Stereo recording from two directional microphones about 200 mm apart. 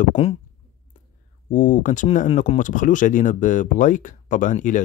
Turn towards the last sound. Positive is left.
turn(degrees=40)  # may be behind; listen again after turning